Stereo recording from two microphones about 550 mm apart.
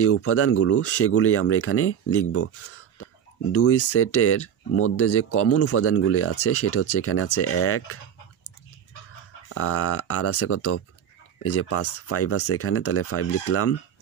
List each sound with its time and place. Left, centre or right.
0.0 s speech: left
9.5 s speech: left